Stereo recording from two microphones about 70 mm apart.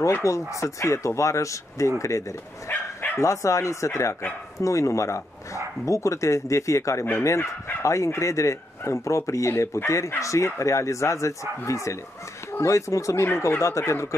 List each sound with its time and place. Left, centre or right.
0.2 s speech: left
2.7 s bow-wow: left
3.2 s speech: left